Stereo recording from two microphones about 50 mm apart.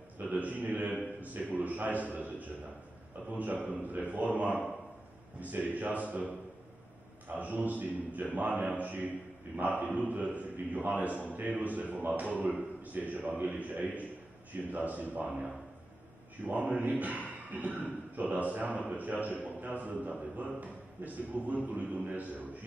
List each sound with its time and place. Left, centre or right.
0.2 s a man's voice: right
16.4 s a man's voice: right